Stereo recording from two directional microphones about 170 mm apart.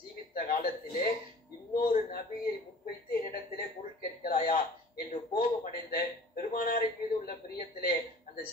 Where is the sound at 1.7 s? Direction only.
60° left (ahead or behind).